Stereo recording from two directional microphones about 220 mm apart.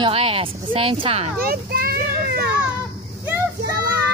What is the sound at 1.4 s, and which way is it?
Children playing, 40° right (ahead or behind).